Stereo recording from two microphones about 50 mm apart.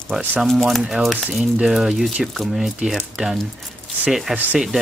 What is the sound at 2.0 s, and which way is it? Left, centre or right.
Speech, centre.